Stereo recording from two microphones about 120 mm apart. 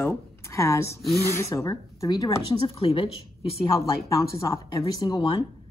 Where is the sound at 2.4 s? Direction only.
50° left (ahead or behind).